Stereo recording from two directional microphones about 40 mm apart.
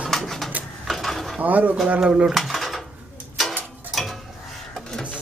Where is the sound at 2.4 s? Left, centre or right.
Centre.